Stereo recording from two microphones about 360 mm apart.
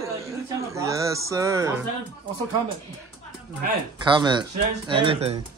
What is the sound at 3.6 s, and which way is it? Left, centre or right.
Speech, centre.